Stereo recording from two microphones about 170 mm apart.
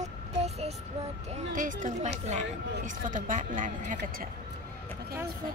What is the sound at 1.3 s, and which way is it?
Speech, 50° right (ahead or behind).